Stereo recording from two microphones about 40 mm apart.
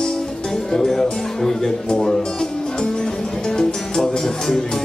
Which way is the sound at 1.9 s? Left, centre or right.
Centre.